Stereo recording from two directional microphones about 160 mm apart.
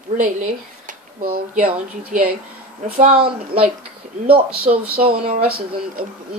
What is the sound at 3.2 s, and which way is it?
Speech, 35° right (ahead or behind).